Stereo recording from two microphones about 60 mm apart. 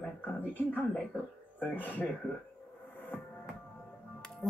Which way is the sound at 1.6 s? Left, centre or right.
Left.